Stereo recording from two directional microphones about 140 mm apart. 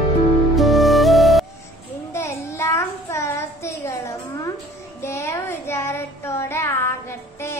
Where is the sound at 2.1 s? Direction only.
20° left (ahead or behind).